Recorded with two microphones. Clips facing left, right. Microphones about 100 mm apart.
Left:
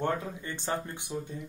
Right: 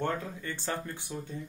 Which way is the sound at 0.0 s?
20° left (ahead or behind).